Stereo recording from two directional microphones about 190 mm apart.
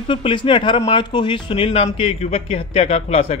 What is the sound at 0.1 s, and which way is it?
A man's voice, 25° left (ahead or behind).